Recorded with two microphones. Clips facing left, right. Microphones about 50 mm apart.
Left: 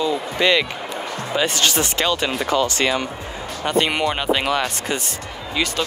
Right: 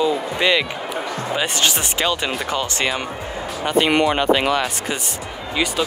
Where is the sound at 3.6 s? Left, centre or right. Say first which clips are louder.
Right 3 dB; centre.